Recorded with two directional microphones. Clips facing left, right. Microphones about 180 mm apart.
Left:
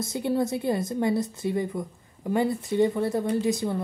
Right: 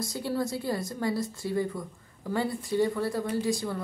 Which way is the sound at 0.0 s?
20° left (ahead or behind).